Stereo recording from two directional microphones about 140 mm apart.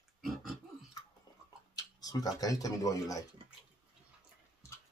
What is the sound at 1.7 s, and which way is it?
Speech, 25° left (ahead or behind).